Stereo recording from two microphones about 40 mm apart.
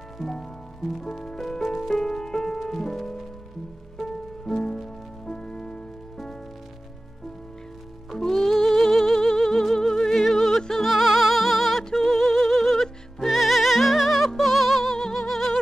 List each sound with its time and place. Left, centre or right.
0.2 s music: centre
8.1 s music: centre
11.8 s music: centre